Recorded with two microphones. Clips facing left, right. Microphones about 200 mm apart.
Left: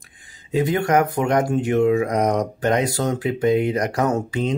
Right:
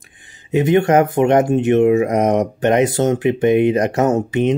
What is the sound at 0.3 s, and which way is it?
Speech, 20° right (ahead or behind).